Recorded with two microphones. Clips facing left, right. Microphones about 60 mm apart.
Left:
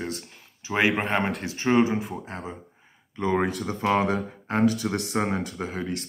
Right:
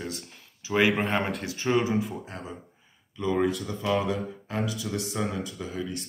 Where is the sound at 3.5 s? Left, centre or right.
Left.